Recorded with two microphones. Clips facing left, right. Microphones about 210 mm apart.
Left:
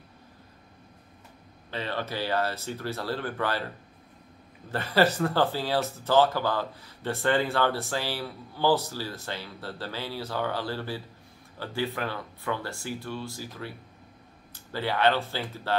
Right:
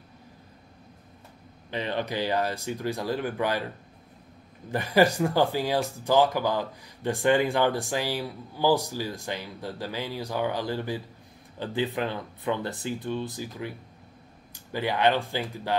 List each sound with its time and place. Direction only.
1.7 s speech: 15° right (ahead or behind)
4.6 s speech: 15° right (ahead or behind)